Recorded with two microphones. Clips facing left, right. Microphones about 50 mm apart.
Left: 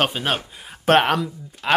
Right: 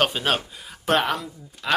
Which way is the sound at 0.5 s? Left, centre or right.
Left.